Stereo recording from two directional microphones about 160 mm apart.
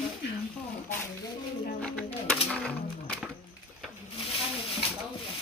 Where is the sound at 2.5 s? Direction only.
5° left (ahead or behind).